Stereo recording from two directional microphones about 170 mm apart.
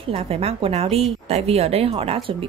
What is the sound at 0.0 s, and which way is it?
A woman's voice, 35° right (ahead or behind).